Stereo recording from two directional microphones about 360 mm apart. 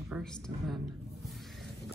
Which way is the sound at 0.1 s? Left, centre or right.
Centre.